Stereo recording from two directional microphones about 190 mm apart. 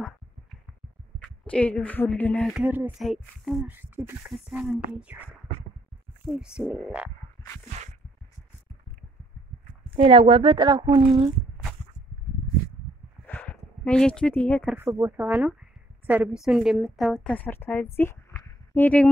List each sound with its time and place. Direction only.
1.2 s speech: 5° left (ahead or behind)
2.5 s a woman's voice: 10° right (ahead or behind)
6.2 s a woman's voice: 5° right (ahead or behind)
9.9 s a woman's voice: 30° right (ahead or behind)
13.3 s a sound: 5° left (ahead or behind)
14.9 s a woman's voice: 15° right (ahead or behind); by 19.0 s 10° left (ahead or behind)